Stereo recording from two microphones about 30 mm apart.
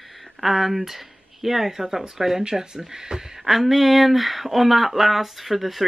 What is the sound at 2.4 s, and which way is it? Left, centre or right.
Speech, right.